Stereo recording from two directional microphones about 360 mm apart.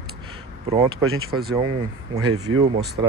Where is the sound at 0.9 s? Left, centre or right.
Right.